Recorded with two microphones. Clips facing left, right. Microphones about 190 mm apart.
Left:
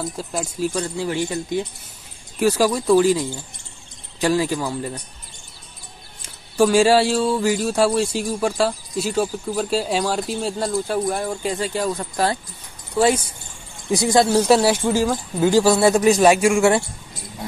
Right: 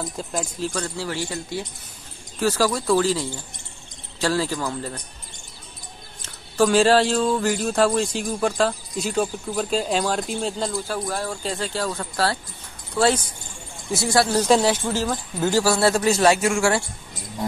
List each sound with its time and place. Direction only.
0.0 s speech: 5° left (ahead or behind)
6.2 s speech: 10° left (ahead or behind)
10.9 s speech: 20° left (ahead or behind)
14.4 s speech: 5° left (ahead or behind)